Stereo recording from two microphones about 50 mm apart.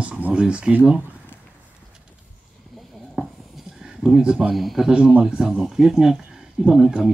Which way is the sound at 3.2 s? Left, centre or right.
Centre.